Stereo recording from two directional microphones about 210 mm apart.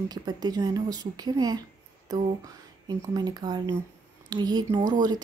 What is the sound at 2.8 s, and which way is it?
Speech, 20° right (ahead or behind).